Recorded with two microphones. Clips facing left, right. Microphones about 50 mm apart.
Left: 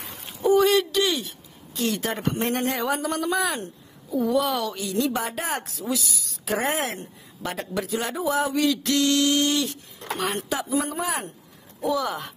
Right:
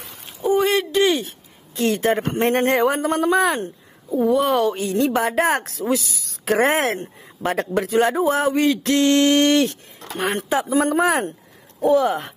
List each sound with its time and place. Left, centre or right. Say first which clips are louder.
0.0 s a sound: left 1 dB; centre
0.5 s a sound: even; right
1.8 s a woman's voice: right 7 dB; right
10.1 s a woman's voice: right 6 dB; right
10.7 s speech: right 9 dB; right
11.8 s a woman's voice: right 8 dB; right